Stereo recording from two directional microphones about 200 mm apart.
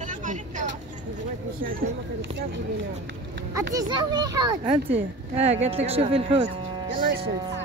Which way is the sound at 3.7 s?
20° right (ahead or behind).